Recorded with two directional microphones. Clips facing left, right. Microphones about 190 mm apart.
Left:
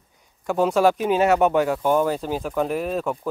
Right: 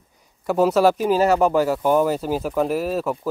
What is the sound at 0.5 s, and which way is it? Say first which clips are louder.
Speech: right 2 dB; 5° right (ahead or behind).